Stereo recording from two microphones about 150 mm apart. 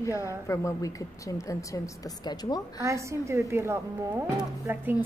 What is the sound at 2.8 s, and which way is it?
A woman's voice, 20° right (ahead or behind).